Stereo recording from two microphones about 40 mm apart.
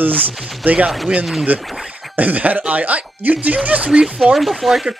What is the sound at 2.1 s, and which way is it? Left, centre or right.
Speech, right.